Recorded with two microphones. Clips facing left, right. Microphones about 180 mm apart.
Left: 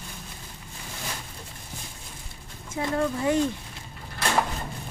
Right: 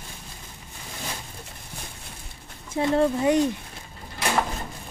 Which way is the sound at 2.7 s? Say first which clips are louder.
Right 5 dB; 30° right (ahead or behind).